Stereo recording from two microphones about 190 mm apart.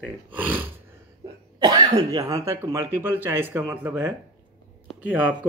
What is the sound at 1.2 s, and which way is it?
Speech, 20° right (ahead or behind).